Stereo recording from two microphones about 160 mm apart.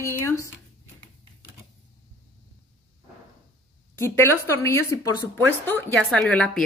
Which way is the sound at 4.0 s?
15° left (ahead or behind).